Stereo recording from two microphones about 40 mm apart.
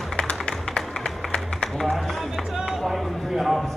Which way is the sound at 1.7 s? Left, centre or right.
Centre.